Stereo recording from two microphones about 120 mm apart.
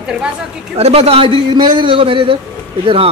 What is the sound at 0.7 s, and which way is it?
Speech, 60° right (ahead or behind).